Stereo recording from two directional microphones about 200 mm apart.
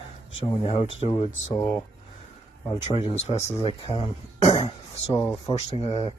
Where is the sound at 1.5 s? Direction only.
15° left (ahead or behind).